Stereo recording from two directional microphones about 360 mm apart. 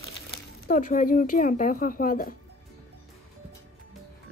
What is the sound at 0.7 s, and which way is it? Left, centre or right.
Speech, left.